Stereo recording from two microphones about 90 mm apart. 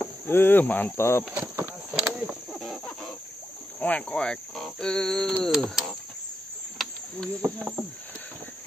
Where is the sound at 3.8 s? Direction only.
15° left (ahead or behind).